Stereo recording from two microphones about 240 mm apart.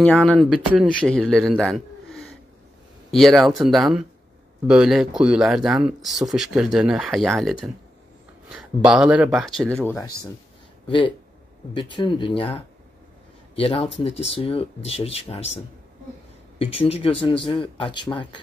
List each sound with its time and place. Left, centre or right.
0.0 s speech: centre
1.6 s gasp: centre
3.1 s speech: centre
9.8 s speech: centre
10.9 s speech: left